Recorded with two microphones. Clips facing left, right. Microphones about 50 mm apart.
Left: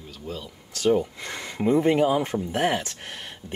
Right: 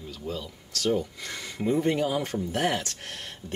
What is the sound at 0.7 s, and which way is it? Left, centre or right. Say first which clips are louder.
Speech: left 5 dB; left.